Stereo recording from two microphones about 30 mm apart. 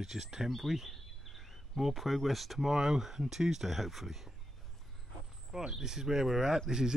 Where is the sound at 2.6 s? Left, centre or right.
Centre.